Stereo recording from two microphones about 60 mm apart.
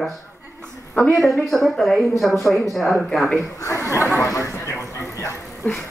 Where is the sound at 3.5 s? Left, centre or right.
Left.